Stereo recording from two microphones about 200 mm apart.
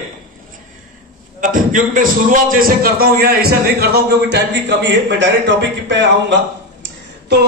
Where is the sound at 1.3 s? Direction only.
40° right (ahead or behind).